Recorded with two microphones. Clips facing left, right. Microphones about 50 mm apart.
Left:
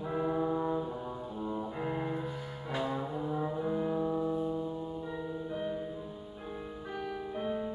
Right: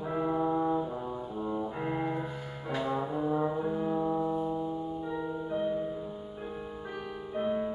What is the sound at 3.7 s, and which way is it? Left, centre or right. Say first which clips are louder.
Music: right 2 dB; centre.